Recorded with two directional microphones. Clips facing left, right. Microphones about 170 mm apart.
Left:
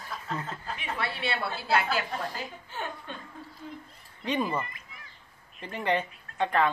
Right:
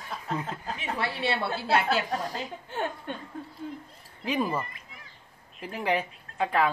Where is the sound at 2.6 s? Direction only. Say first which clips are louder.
Right 5 dB; 55° right (ahead or behind).